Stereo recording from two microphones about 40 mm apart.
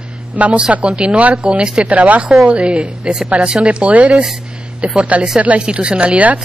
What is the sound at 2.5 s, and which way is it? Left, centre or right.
Speech, right.